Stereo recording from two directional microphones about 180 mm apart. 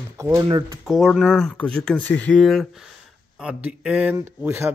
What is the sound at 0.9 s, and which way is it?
Speech, centre (ahead or behind).